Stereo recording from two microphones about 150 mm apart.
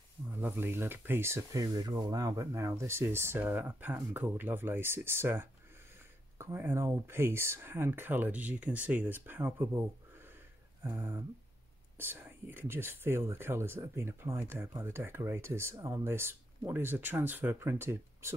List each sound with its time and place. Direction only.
0.3 s speech: 15° right (ahead or behind)
10.8 s a sound: 15° right (ahead or behind)
12.0 s speech: 15° right (ahead or behind)